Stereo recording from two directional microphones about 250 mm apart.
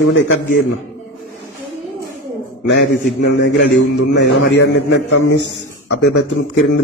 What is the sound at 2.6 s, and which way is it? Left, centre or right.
A man's voice, left.